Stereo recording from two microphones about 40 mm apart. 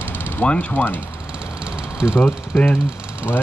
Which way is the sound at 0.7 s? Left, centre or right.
Left.